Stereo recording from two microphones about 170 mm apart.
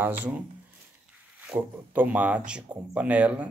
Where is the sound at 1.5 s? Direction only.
10° right (ahead or behind).